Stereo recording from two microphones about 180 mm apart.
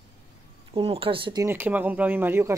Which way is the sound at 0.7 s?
30° right (ahead or behind).